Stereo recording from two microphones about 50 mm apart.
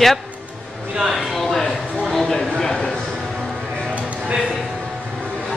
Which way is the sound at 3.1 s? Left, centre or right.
Centre.